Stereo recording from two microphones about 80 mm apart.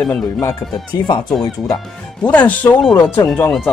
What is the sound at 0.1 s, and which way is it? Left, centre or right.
Speech, left.